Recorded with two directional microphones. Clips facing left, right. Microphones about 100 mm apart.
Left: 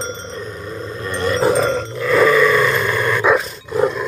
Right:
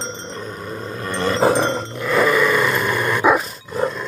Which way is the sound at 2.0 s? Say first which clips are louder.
Left 4 dB; 15° right (ahead or behind).